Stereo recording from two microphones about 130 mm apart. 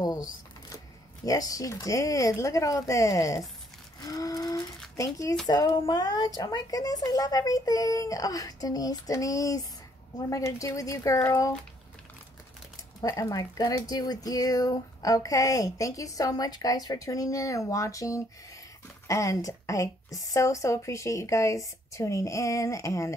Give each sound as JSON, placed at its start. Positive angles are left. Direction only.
{"t": 1.2, "sound": "speech", "side_deg": 25}
{"t": 4.0, "sound": "ratchet", "side_deg": 30}
{"t": 4.9, "sound": "speech", "side_deg": 25}
{"t": 13.0, "sound": "speech", "side_deg": 25}